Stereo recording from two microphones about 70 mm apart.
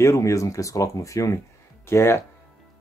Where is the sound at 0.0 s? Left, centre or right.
Left.